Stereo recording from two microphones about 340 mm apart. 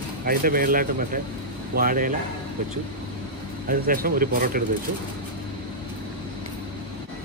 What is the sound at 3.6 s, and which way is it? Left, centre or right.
Speech, right.